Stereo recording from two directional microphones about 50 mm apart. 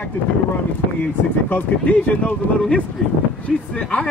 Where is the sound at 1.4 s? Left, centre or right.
Left.